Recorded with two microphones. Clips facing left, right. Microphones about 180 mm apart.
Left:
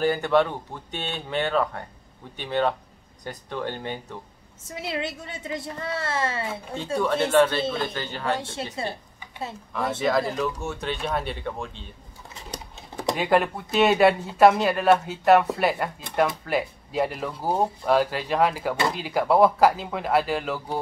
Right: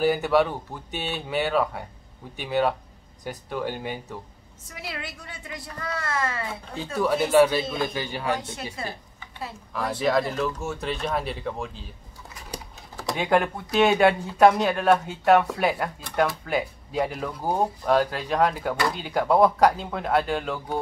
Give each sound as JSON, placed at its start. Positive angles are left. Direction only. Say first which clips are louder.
{"t": 0.0, "sound": "speech", "louder": "even", "side_deg": -10}
{"t": 4.6, "sound": "a woman's voice", "louder": "left 7 dB", "side_deg": 25}
{"t": 7.2, "sound": "speech", "louder": "right 2 dB", "side_deg": -10}
{"t": 8.4, "sound": "a woman's voice", "louder": "left 3 dB", "side_deg": 30}
{"t": 9.7, "sound": "speech", "louder": "even", "side_deg": 0}
{"t": 13.1, "sound": "speech", "louder": "left 1 dB", "side_deg": 0}